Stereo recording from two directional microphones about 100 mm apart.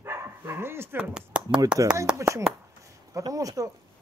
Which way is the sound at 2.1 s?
30° right (ahead or behind).